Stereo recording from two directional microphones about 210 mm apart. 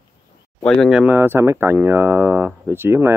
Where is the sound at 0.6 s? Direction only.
Centre (ahead or behind).